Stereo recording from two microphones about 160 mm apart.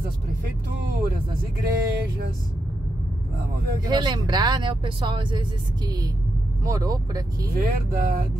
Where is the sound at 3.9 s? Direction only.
30° right (ahead or behind).